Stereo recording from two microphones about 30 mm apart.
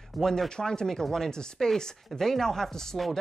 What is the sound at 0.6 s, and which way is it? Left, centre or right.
Speech, left.